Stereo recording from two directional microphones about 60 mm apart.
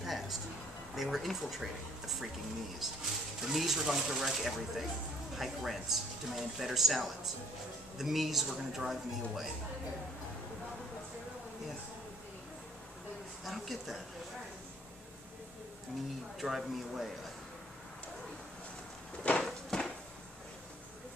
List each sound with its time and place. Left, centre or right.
0.0 s music: centre
0.9 s speech: centre
13.4 s speech: centre
16.3 s speech: centre
19.4 s a sound: centre